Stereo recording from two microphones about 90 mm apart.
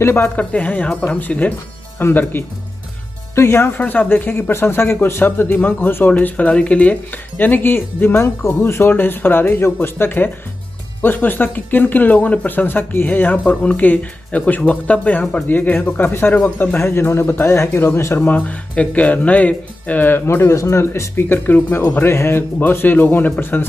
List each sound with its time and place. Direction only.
0.0 s speech: 30° left (ahead or behind)
0.4 s speech: 15° left (ahead or behind)